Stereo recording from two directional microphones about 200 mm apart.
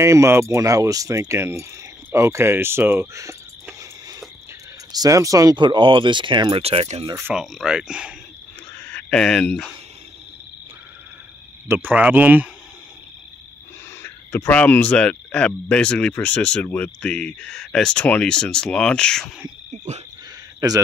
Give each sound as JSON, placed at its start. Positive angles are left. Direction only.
{"t": 0.0, "sound": "speech", "side_deg": -15}
{"t": 2.1, "sound": "cricket", "side_deg": -15}
{"t": 4.9, "sound": "speech", "side_deg": -15}
{"t": 7.2, "sound": "speech", "side_deg": -5}
{"t": 8.7, "sound": "a sound", "side_deg": 5}
{"t": 11.6, "sound": "speech", "side_deg": -10}
{"t": 14.0, "sound": "speech", "side_deg": 10}
{"t": 19.7, "sound": "wild animals", "side_deg": -35}